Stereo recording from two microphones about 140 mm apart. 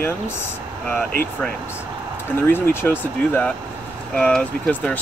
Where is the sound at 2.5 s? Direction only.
15° left (ahead or behind).